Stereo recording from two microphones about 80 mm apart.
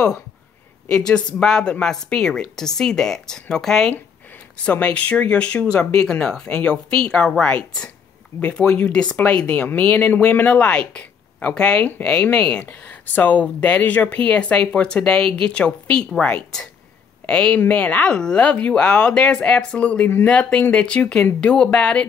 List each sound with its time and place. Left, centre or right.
0.9 s speech: centre
4.6 s speech: centre